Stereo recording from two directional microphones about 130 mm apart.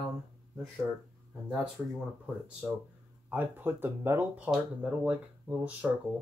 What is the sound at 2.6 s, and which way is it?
Speech, 15° right (ahead or behind).